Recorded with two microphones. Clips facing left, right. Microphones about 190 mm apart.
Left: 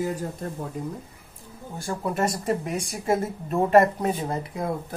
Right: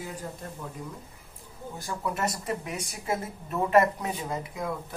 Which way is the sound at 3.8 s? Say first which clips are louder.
Left 4 dB; 45° left (ahead or behind).